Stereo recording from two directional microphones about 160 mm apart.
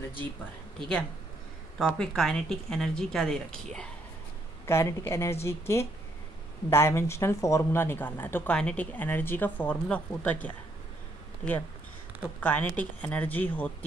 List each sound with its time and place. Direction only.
0.7 s speech: 5° left (ahead or behind)
4.6 s speech: 15° left (ahead or behind)
12.4 s speech: 10° left (ahead or behind)